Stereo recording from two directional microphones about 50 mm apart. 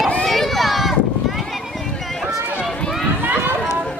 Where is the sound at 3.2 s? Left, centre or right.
Right.